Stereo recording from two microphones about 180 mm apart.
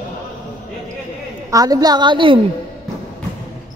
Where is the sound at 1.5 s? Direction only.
20° right (ahead or behind).